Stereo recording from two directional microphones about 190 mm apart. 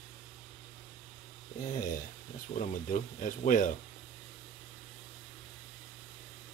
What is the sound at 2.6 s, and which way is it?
Speech, 40° left (ahead or behind).